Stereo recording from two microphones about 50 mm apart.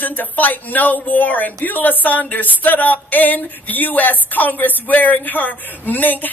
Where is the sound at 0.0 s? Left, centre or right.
Left.